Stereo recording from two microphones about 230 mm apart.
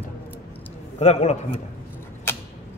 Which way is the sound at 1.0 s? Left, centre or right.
Left.